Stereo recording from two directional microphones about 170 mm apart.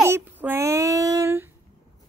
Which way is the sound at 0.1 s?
15° right (ahead or behind).